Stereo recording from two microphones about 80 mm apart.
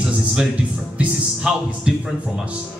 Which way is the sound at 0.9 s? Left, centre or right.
Centre.